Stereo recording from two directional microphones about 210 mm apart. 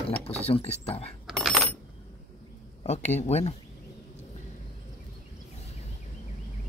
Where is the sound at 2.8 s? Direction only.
30° left (ahead or behind).